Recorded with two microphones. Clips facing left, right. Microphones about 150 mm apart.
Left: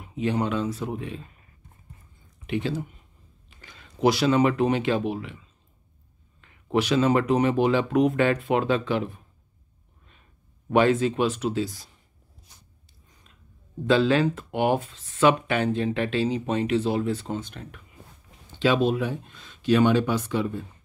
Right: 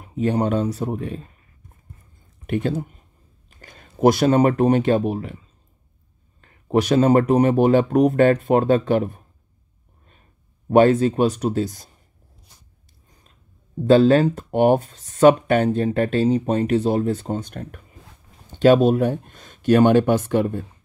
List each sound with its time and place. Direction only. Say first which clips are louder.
0.0 s speech: right 5 dB; 40° right (ahead or behind)
2.4 s speech: right 5 dB; 50° right (ahead or behind)
6.4 s speech: right 5 dB; 40° right (ahead or behind)
10.7 s speech: right 6 dB; 40° right (ahead or behind)
13.8 s speech: right 7 dB; 45° right (ahead or behind)